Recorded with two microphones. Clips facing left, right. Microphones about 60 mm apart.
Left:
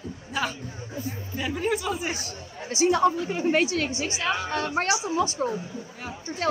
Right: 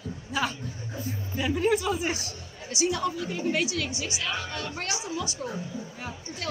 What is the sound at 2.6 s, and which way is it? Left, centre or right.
A woman's voice, left.